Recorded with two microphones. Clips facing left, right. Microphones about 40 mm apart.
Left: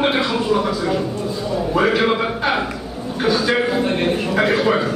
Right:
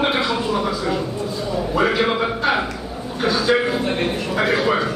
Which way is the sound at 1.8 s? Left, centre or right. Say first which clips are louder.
Left 2 dB; centre.